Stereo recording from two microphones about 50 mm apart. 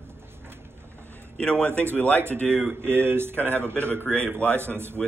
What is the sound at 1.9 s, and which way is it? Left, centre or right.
Speech, left.